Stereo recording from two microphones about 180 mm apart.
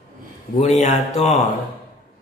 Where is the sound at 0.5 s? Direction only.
40° left (ahead or behind).